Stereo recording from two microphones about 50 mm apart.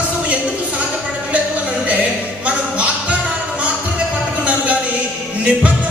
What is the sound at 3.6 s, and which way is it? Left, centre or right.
Music, right.